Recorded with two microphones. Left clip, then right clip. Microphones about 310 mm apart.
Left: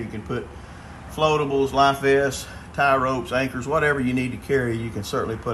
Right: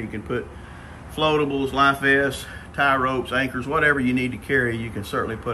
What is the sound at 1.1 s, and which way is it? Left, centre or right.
Speech, centre.